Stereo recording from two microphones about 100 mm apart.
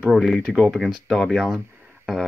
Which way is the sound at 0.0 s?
Centre (ahead or behind).